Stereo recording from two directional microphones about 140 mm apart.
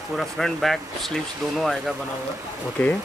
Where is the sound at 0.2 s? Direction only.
Centre (ahead or behind).